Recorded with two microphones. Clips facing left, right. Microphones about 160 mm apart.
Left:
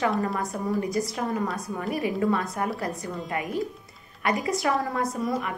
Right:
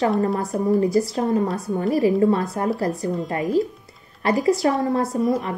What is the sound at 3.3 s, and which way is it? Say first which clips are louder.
A woman's voice: right 7 dB; 35° right (ahead or behind).